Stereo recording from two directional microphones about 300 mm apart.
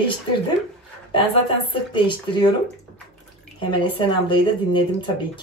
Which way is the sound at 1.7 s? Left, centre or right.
Centre.